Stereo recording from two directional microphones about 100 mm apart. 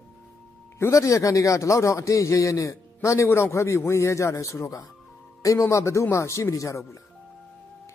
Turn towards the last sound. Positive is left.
turn(degrees=30)  # may be behind; listen again after turning